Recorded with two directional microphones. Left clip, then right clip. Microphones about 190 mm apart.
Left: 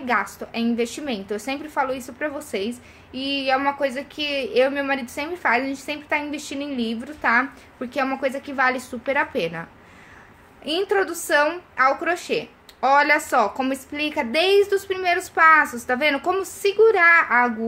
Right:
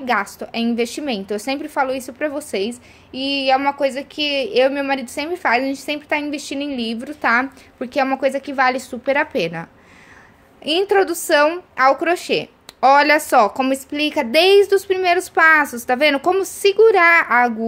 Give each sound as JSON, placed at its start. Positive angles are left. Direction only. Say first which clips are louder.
{"t": 0.0, "sound": "a woman's voice", "louder": "right 3 dB", "side_deg": -45}